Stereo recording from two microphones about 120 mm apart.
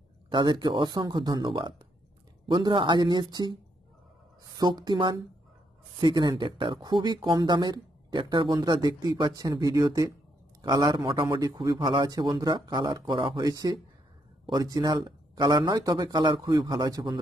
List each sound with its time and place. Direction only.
0.3 s speech: 40° right (ahead or behind)
4.6 s speech: 35° right (ahead or behind)